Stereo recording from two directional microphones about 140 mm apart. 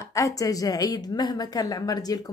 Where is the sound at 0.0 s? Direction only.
20° left (ahead or behind).